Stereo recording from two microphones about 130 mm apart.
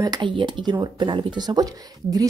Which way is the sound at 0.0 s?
35° right (ahead or behind).